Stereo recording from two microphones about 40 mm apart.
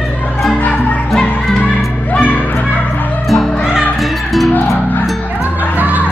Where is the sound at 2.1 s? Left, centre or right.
Left.